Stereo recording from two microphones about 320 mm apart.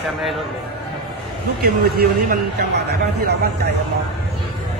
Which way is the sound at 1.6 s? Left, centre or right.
Right.